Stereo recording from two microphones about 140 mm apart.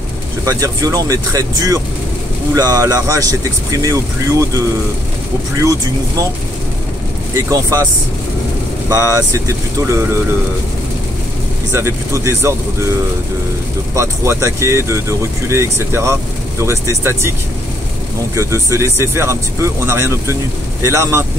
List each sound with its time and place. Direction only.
0.5 s speech: 25° right (ahead or behind)
7.3 s speech: 20° right (ahead or behind)
9.5 s speech: 20° right (ahead or behind)
11.7 s speech: 20° right (ahead or behind)
13.9 s speech: 20° right (ahead or behind)
18.3 s speech: 20° right (ahead or behind)